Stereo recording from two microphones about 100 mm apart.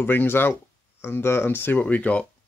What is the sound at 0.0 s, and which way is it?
Speech, 20° left (ahead or behind).